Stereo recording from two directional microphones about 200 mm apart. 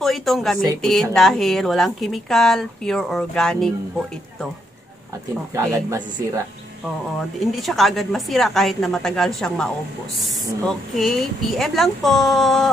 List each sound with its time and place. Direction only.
0.0 s a woman's voice: centre (ahead or behind)
5.5 s speech: 15° right (ahead or behind)
7.5 s a woman's voice: centre (ahead or behind)